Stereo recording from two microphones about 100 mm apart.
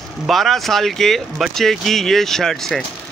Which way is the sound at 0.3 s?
Centre (ahead or behind).